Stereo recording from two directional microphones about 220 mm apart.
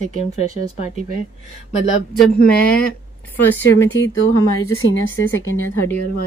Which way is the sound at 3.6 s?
55° left (ahead or behind).